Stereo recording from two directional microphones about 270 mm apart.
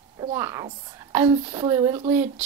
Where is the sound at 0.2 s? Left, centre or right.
Centre.